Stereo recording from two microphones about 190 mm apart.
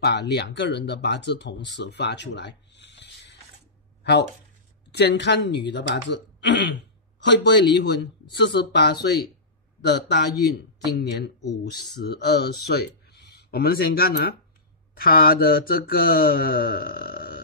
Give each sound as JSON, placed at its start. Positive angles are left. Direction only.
{"t": 0.0, "sound": "speech", "side_deg": 60}
{"t": 15.0, "sound": "mantra", "side_deg": 50}